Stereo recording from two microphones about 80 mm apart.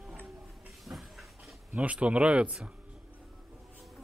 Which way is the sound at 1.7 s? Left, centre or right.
Centre.